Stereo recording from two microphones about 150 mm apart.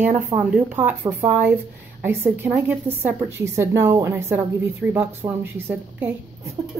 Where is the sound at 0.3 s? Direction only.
30° right (ahead or behind).